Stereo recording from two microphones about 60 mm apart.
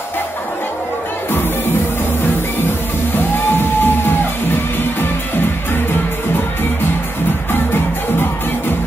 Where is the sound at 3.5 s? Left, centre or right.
Left.